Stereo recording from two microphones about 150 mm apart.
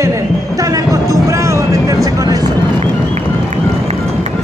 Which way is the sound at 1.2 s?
20° right (ahead or behind).